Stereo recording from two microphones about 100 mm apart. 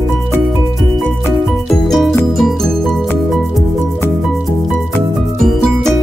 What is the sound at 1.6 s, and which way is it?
Music, 5° left (ahead or behind).